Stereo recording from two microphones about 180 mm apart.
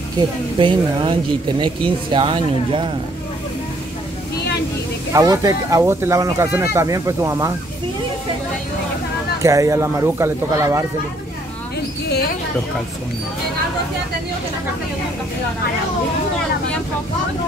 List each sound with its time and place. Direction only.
0.2 s speech: 25° right (ahead or behind)
5.1 s speech: 20° right (ahead or behind)
9.4 s speech: 20° right (ahead or behind)